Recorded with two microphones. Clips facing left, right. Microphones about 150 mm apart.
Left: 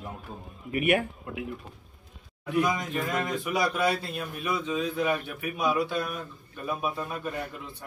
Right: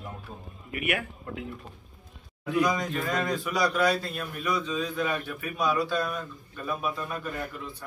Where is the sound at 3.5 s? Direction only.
25° left (ahead or behind).